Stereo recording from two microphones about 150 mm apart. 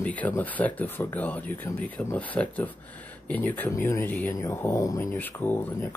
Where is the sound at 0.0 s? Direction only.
10° left (ahead or behind).